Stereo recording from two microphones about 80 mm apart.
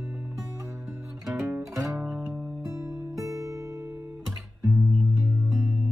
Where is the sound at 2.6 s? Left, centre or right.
Right.